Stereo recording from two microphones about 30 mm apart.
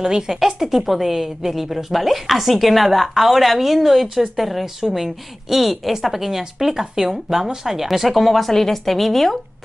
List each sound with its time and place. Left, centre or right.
0.0 s a woman's voice: right; by 9.4 s centre